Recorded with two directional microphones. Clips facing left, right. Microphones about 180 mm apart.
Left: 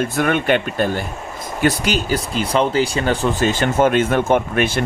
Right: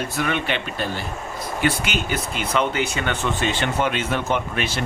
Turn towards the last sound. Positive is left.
turn(degrees=50)  # may be behind; listen again after turning